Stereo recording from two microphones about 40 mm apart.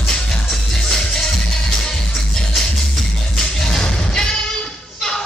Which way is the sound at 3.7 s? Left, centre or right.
Centre.